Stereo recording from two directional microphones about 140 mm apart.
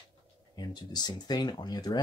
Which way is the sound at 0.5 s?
30° left (ahead or behind).